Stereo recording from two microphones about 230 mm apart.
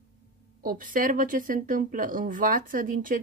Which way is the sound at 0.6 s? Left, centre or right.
Right.